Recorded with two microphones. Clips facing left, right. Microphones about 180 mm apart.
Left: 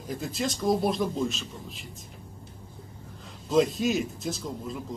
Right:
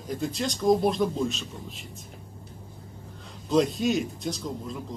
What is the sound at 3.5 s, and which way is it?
Speech, centre (ahead or behind).